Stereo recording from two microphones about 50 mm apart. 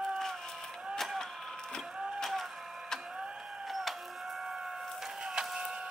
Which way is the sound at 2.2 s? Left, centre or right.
Centre.